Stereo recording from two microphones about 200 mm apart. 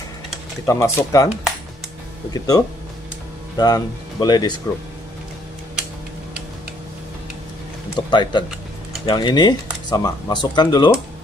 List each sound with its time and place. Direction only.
0.7 s speech: 15° left (ahead or behind)
2.3 s speech: 20° left (ahead or behind)
8.1 s speech: 20° left (ahead or behind)